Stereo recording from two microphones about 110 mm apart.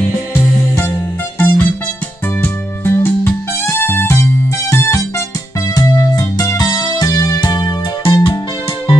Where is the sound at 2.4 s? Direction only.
20° left (ahead or behind).